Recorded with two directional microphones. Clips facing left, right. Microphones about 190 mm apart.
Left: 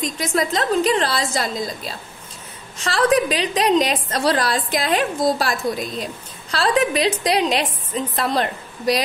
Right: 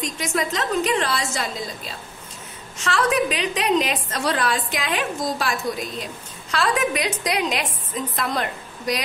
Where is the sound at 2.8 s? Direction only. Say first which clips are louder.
Left 3 dB; 35° left (ahead or behind).